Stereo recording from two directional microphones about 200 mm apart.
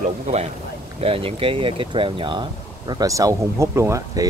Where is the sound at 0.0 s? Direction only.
35° right (ahead or behind).